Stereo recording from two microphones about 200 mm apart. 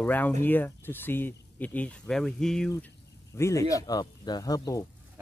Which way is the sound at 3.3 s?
15° left (ahead or behind).